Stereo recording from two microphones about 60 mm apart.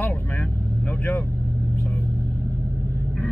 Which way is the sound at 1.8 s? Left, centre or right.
Left.